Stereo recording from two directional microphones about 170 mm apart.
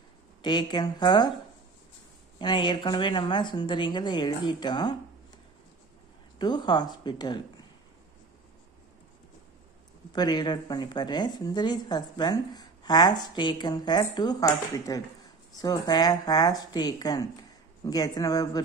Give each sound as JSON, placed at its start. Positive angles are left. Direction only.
{"t": 0.4, "sound": "a woman's voice", "side_deg": 25}
{"t": 2.3, "sound": "a woman's voice", "side_deg": 25}
{"t": 6.3, "sound": "a woman's voice", "side_deg": 25}
{"t": 10.1, "sound": "a woman's voice", "side_deg": 25}